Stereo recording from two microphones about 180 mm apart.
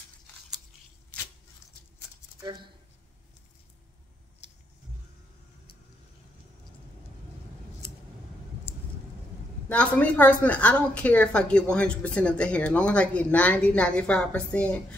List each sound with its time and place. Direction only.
9.7 s a woman's voice: 5° left (ahead or behind)